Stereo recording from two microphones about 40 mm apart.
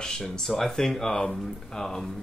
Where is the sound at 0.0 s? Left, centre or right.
Centre.